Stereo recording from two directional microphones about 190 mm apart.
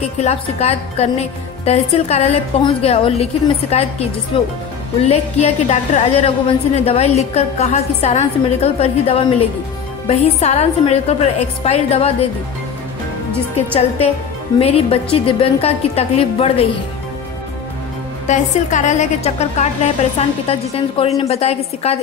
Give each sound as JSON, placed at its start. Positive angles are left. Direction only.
{"t": 0.2, "sound": "a woman's voice", "side_deg": 35}
{"t": 13.7, "sound": "a woman's voice", "side_deg": 30}
{"t": 18.2, "sound": "a woman's voice", "side_deg": 40}